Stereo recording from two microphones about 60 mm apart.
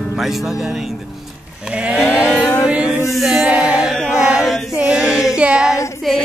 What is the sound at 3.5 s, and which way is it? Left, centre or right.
Chant, centre.